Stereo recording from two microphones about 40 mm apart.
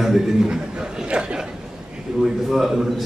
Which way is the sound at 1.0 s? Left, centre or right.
Right.